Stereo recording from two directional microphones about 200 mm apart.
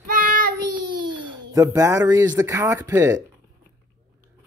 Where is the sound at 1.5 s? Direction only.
15° right (ahead or behind).